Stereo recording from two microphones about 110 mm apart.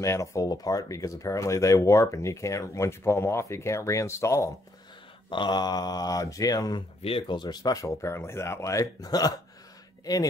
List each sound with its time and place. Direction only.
0.0 s speech: 30° left (ahead or behind)
5.3 s speech: 45° left (ahead or behind)
7.0 s speech: 55° left (ahead or behind); by 9.3 s 35° left (ahead or behind)